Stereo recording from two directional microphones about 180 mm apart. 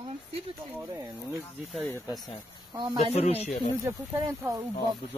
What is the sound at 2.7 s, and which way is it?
Speech, 25° right (ahead or behind).